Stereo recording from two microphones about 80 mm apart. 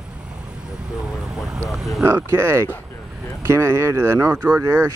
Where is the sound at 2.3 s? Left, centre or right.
Right.